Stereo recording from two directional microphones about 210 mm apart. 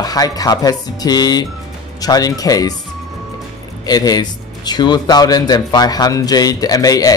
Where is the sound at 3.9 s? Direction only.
20° left (ahead or behind).